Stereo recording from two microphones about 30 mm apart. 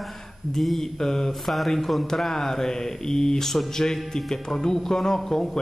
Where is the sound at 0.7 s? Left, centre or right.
Centre.